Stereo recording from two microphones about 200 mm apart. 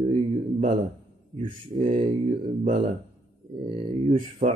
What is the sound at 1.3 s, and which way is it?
A man's voice, 40° right (ahead or behind).